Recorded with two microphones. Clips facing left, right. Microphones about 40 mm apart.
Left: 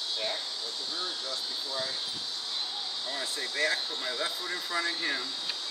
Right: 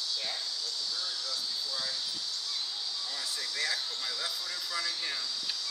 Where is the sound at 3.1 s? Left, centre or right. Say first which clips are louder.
Left 5 dB; left.